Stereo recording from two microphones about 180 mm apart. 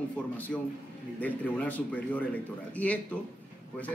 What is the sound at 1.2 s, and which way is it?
A man's voice, 10° left (ahead or behind).